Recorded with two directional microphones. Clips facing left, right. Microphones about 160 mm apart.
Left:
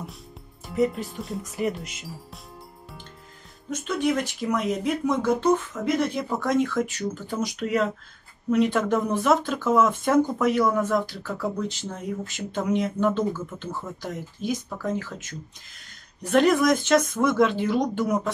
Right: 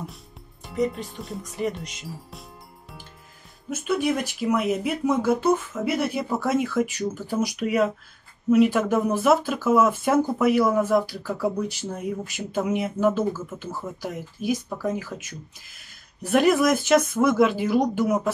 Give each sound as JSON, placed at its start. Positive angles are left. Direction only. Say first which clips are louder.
{"t": 0.7, "sound": "speech", "louder": "left 2 dB", "side_deg": 0}
{"t": 3.7, "sound": "speech", "louder": "right 1 dB", "side_deg": -10}